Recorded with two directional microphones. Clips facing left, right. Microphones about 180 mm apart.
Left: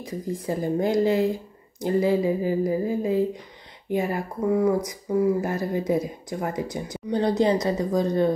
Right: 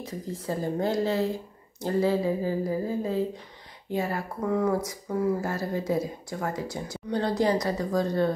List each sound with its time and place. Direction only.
0.0 s speech: 15° left (ahead or behind)